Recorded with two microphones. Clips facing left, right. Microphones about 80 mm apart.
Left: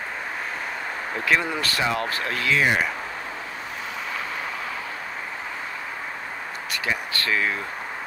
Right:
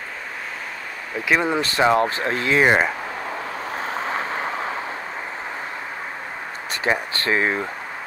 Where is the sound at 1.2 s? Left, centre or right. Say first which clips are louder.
Right 4 dB; right.